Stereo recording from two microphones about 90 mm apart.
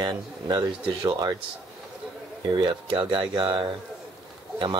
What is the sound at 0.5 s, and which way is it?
Speech, 45° right (ahead or behind).